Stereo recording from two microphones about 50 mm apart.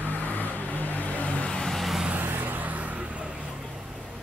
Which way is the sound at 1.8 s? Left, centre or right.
Centre.